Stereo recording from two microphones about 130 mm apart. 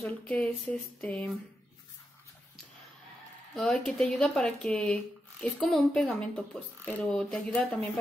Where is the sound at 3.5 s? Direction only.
5° left (ahead or behind).